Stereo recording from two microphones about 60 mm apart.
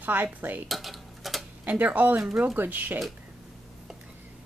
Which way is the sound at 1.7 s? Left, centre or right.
Right.